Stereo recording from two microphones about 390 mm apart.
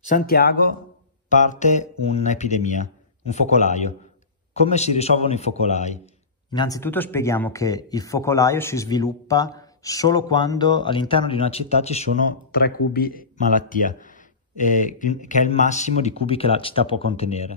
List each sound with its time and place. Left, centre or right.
0.0 s speech: centre